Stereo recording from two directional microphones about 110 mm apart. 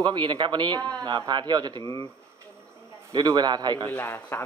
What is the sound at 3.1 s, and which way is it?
Speech, 40° right (ahead or behind).